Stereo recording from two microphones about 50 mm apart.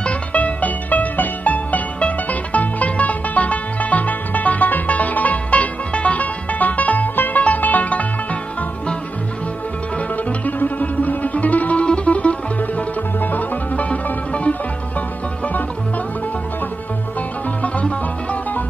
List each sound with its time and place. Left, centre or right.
0.0 s music: left
10.4 s music: left
17.6 s music: left